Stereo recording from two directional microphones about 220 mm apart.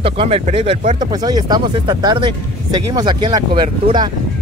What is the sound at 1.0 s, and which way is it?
Speech, 20° right (ahead or behind).